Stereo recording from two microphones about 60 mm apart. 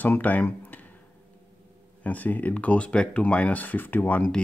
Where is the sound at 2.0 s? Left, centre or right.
Left.